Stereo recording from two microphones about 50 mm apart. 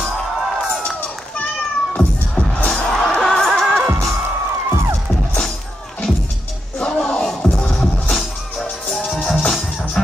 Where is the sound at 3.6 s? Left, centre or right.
Centre.